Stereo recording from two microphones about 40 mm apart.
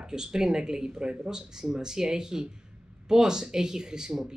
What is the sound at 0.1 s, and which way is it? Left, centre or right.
Speech, centre.